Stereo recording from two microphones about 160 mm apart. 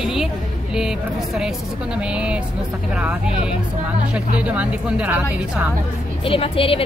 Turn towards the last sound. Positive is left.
turn(degrees=35)  # may be behind; listen again after turning